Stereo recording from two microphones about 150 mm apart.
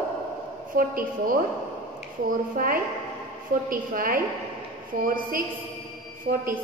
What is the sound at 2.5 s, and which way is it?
A woman's voice, 70° right (ahead or behind).